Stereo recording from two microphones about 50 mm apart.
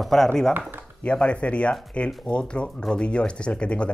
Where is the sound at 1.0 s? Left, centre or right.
Left.